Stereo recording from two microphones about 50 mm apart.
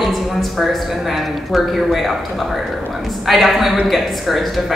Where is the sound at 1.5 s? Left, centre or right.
Centre.